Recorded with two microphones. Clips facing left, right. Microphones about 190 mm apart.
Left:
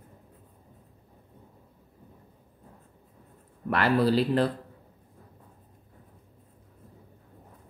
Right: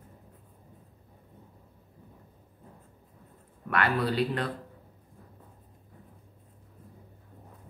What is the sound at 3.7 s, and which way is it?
Speech, 35° left (ahead or behind).